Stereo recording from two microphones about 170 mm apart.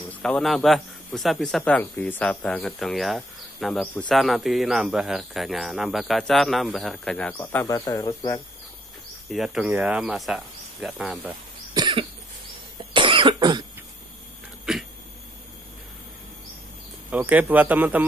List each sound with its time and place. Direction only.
0.1 s a man's voice: 5° left (ahead or behind)
7.5 s speech: 20° left (ahead or behind)
9.3 s a man's voice: centre (ahead or behind)
11.7 s cough: 30° right (ahead or behind)
14.7 s a sound: 5° right (ahead or behind)
17.1 s speech: 10° right (ahead or behind)